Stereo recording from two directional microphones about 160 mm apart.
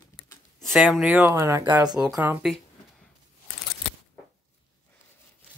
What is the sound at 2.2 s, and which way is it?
Speech, 10° right (ahead or behind).